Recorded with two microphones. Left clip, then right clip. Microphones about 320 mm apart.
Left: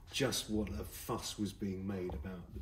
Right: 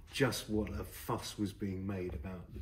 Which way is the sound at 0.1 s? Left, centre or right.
Centre.